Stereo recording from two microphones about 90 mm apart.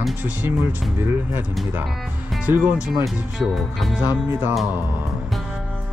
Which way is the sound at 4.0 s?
25° right (ahead or behind).